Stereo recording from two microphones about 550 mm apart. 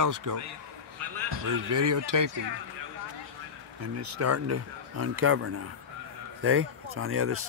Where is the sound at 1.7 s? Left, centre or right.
Right.